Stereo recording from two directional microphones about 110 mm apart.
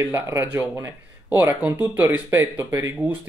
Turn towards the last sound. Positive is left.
turn(degrees=-20)  # may be behind; listen again after turning